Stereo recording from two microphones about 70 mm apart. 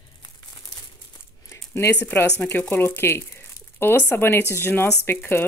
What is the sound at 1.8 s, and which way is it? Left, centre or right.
Speech, left.